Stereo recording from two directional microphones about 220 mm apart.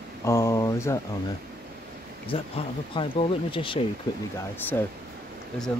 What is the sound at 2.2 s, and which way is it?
Speech, 25° left (ahead or behind).